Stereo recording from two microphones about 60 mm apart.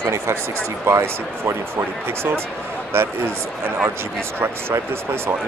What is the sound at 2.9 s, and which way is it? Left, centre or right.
Speech, right.